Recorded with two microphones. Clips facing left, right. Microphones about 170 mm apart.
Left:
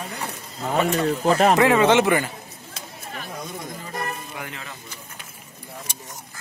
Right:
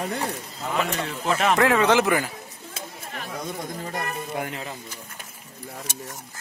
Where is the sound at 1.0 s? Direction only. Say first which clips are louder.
Left 6 dB; 40° left (ahead or behind).